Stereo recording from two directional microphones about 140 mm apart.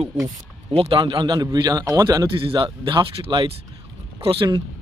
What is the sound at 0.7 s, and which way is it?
A man's voice, 35° right (ahead or behind).